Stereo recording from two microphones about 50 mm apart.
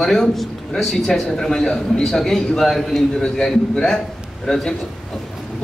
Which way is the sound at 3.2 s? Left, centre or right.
Centre.